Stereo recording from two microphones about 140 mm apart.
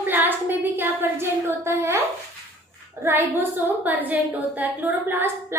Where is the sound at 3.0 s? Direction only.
15° right (ahead or behind).